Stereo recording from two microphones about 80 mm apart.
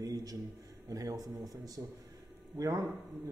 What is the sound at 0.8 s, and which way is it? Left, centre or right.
Speech, right.